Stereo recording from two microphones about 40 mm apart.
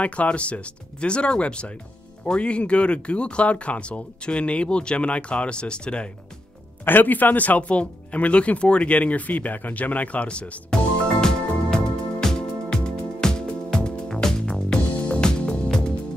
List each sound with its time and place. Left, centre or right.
0.0 s speech: left
6.8 s speech: left
10.7 s music: centre